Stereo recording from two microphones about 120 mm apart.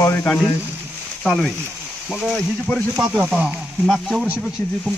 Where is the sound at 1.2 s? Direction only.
5° left (ahead or behind).